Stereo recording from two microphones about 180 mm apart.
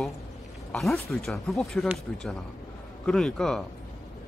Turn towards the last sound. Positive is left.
turn(degrees=5)  # may be behind; listen again after turning